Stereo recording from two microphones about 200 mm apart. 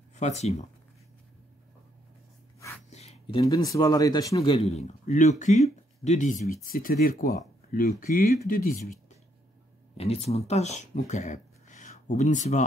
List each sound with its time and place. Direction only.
0.1 s speech: 35° left (ahead or behind)
2.9 s a sound: 35° left (ahead or behind)
3.4 s speech: 15° left (ahead or behind); by 8.7 s 45° left (ahead or behind)
9.9 s speech: 30° left (ahead or behind)